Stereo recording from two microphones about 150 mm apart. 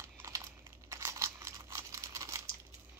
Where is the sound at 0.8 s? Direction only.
20° right (ahead or behind).